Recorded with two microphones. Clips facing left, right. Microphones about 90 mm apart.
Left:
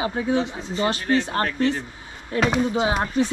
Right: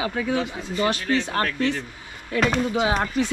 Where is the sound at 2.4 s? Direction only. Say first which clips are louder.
Left 1 dB; centre (ahead or behind).